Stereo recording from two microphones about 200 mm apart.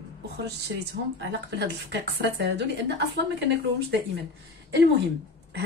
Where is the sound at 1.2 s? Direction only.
60° right (ahead or behind).